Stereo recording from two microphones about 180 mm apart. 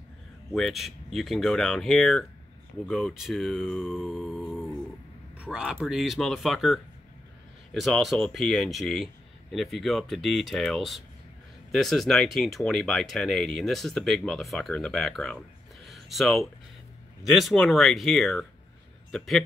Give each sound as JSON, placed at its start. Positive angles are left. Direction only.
{"t": 0.5, "sound": "speech", "side_deg": 0}
{"t": 4.4, "sound": "dog", "side_deg": 0}
{"t": 5.4, "sound": "speech", "side_deg": -5}
{"t": 15.8, "sound": "a sound", "side_deg": 0}
{"t": 17.2, "sound": "speech", "side_deg": 0}